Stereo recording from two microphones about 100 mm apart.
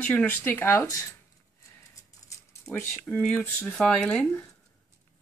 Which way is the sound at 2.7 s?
20° left (ahead or behind).